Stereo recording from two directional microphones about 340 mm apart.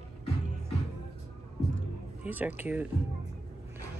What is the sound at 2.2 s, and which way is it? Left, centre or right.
Speech, centre.